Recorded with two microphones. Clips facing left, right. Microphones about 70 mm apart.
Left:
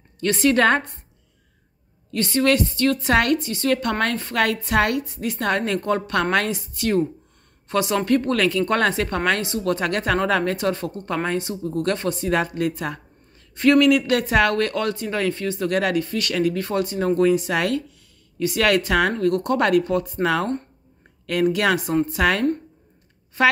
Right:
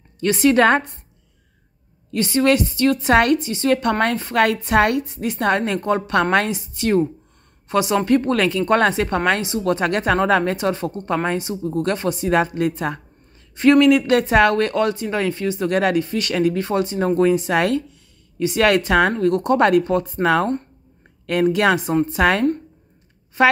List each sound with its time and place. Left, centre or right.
0.2 s a woman's voice: centre
2.0 s a woman's voice: centre
7.6 s a woman's voice: centre
12.4 s speech: right
15.7 s speech: right